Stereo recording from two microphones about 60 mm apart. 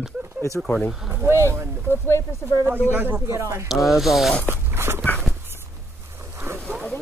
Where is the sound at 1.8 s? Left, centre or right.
Left.